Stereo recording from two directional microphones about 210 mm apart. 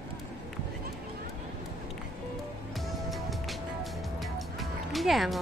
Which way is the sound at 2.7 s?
Centre (ahead or behind).